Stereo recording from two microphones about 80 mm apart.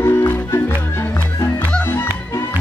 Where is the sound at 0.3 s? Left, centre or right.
Left.